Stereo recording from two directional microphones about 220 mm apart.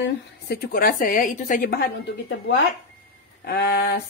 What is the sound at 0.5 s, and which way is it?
A woman's voice, 40° left (ahead or behind).